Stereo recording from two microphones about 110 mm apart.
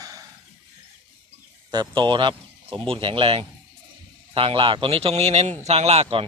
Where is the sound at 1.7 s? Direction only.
40° right (ahead or behind).